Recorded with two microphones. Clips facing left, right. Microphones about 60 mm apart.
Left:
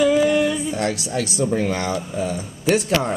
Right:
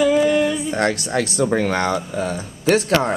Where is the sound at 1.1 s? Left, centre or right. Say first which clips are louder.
Right 3 dB; right.